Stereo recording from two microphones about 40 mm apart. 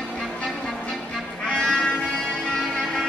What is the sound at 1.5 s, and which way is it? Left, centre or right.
Music, centre.